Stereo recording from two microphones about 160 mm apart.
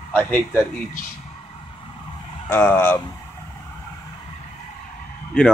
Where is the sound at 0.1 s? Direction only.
10° left (ahead or behind).